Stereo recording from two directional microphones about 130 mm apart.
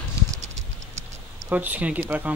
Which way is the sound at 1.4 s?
10° right (ahead or behind).